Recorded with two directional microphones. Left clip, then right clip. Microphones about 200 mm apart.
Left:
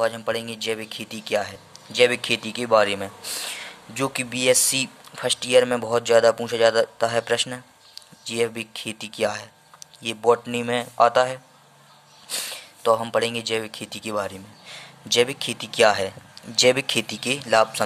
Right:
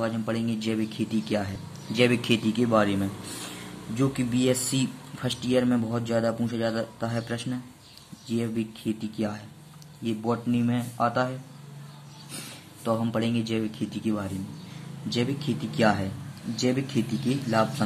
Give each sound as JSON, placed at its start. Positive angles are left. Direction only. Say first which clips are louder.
{"t": 0.0, "sound": "speech", "louder": "left 6 dB", "side_deg": 25}
{"t": 12.8, "sound": "speech", "louder": "left 8 dB", "side_deg": 30}